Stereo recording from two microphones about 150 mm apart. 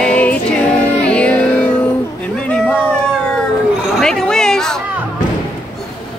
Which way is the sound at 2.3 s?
5° left (ahead or behind).